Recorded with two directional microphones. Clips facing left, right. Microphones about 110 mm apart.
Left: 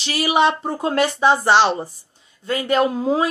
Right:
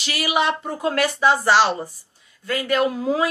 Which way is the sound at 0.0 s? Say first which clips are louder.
Left 4 dB; 30° left (ahead or behind).